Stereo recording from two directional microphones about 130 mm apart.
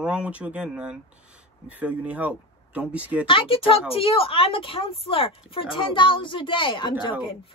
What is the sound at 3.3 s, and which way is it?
A woman's voice, 45° left (ahead or behind).